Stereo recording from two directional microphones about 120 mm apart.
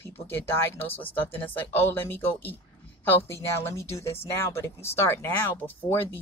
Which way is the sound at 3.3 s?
25° left (ahead or behind).